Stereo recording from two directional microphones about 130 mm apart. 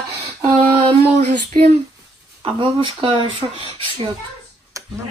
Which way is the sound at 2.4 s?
40° right (ahead or behind).